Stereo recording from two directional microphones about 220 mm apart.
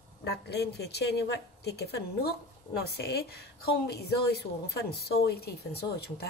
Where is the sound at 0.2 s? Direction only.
50° left (ahead or behind).